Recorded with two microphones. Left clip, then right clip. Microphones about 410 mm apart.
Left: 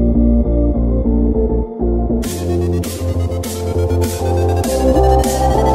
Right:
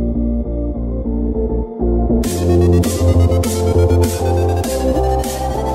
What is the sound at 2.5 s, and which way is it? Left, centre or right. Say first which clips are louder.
Music: right 6 dB; right.